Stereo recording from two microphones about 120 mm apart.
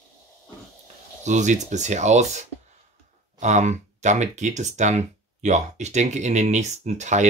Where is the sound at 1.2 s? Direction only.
85° right.